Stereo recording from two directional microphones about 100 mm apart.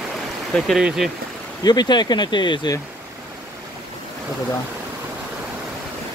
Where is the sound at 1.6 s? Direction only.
45° left (ahead or behind).